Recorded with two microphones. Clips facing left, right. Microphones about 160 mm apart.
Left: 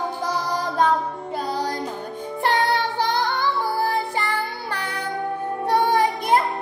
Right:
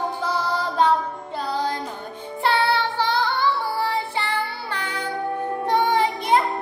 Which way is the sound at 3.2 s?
40° left (ahead or behind).